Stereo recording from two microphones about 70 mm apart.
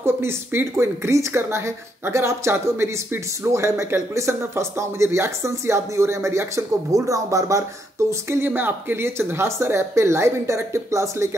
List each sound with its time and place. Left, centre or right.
0.0 s speech: right
8.1 s speech: right